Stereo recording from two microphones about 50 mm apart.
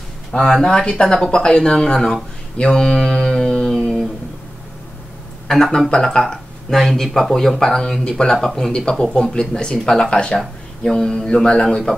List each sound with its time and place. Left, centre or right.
0.3 s speech: centre
2.5 s a sound: centre
5.5 s speech: centre